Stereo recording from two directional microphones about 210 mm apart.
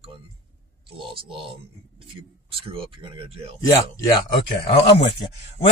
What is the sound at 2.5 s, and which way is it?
Speech, 25° right (ahead or behind).